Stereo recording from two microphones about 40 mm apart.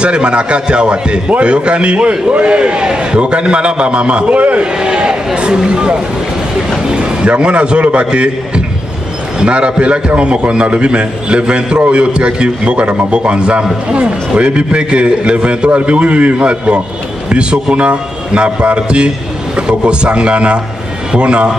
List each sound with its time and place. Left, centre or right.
0.0 s a man's voice: right
4.7 s a sound: right
7.2 s a man's voice: right